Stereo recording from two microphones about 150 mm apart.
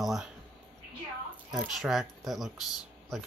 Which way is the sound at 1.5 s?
Centre (ahead or behind).